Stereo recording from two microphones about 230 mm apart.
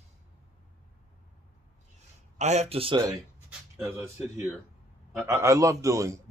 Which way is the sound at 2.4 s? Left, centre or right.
Right.